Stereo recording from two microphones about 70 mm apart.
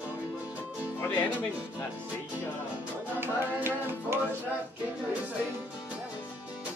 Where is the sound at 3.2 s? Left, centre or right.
Right.